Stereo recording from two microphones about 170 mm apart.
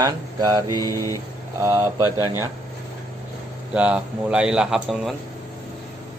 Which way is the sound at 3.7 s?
5° right (ahead or behind).